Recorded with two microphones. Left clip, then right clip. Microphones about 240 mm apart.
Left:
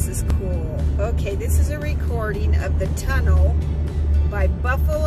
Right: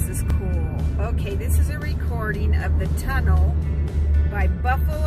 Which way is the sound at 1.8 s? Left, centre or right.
Centre.